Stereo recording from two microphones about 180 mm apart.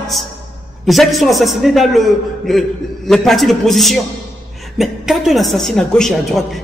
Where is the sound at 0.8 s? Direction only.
Centre (ahead or behind).